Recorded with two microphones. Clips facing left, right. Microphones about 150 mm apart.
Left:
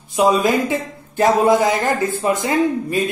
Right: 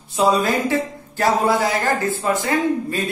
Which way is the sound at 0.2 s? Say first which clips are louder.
Left 2 dB; 15° left (ahead or behind).